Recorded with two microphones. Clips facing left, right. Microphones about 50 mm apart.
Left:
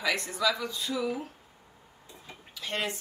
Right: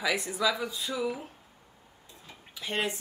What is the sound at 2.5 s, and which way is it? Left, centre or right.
Speech, centre.